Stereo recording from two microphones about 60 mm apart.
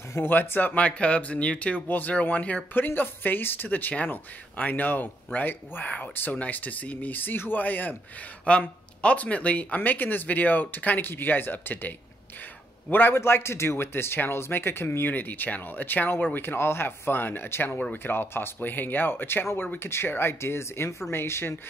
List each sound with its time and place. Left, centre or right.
0.1 s speech: left
2.7 s a man's voice: left
8.5 s speech: centre
12.9 s a man's voice: left